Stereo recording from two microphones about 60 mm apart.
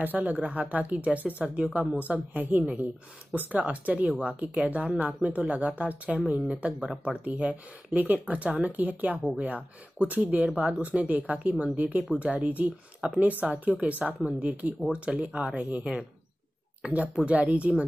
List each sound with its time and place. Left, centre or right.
0.0 s speech: right
17.2 s speech: right